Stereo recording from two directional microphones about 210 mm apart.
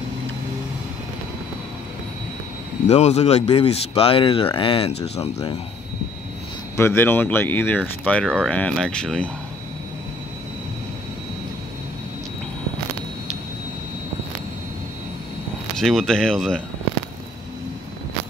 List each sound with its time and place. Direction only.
2.9 s speech: 30° left (ahead or behind)
6.8 s speech: 10° left (ahead or behind)
15.8 s speech: centre (ahead or behind)